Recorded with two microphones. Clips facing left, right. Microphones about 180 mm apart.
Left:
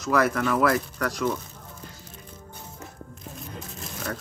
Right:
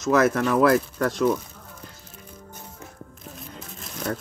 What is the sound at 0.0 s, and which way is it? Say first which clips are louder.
Speech: right 3 dB; 25° right (ahead or behind).